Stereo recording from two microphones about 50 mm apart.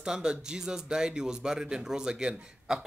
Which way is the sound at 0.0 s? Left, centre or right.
Centre.